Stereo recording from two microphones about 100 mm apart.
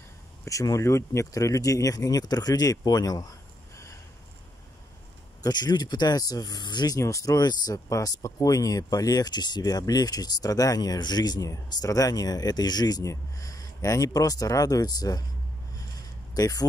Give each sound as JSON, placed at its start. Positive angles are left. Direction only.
{"t": 0.5, "sound": "speech", "side_deg": 35}
{"t": 5.4, "sound": "speech", "side_deg": 45}
{"t": 7.0, "sound": "speech", "side_deg": 35}
{"t": 16.3, "sound": "speech", "side_deg": 40}